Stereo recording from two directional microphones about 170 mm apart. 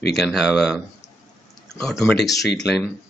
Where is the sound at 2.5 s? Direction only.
5° left (ahead or behind).